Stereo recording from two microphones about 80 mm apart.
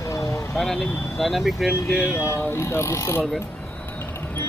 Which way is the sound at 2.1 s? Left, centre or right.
Left.